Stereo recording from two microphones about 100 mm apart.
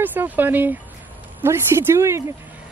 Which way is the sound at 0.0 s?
20° right (ahead or behind).